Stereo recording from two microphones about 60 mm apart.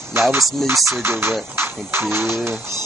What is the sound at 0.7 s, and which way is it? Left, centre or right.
Speech, right.